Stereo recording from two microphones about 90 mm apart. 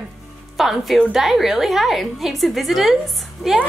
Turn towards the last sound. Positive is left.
turn(degrees=0)  # may be behind; listen again after turning